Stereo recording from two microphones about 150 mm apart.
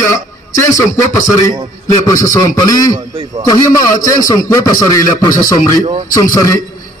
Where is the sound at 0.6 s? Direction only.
20° left (ahead or behind).